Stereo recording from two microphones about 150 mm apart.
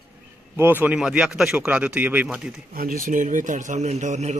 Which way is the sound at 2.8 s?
70° right (ahead or behind).